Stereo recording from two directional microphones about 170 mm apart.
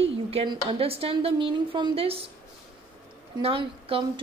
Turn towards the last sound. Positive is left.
turn(degrees=-30)  # may be behind; listen again after turning